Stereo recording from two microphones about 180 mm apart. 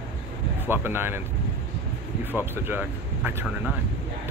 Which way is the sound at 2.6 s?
10° right (ahead or behind).